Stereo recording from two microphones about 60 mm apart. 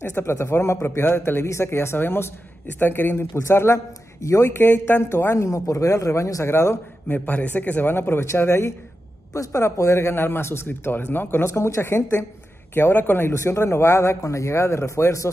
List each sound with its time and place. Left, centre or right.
0.0 s speech: left
1.0 s speech: left
4.6 s speech: left
5.3 s speech: left
7.2 s speech: left
9.3 s speech: left
13.3 s speech: left